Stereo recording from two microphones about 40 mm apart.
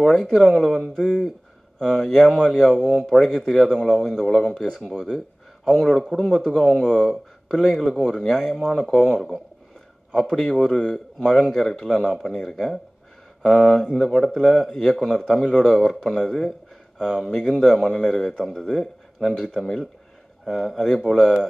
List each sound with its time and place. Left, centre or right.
0.0 s a man's voice: centre
9.1 s speech: centre
10.8 s a man's voice: centre
13.4 s a man's voice: centre